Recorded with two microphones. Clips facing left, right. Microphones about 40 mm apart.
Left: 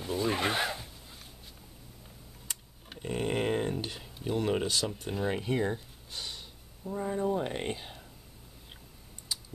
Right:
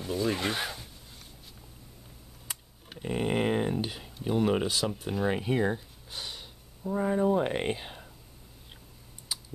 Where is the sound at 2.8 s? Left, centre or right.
Centre.